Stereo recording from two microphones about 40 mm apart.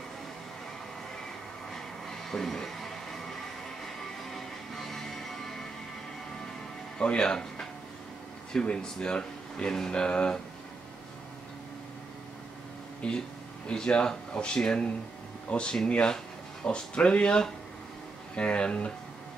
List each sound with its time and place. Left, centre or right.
1.7 s music: centre
7.0 s speech: left
13.0 s speech: left